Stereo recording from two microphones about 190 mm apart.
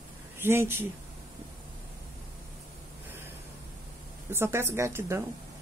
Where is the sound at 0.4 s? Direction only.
10° right (ahead or behind).